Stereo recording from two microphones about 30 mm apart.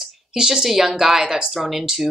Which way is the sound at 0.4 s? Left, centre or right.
Centre.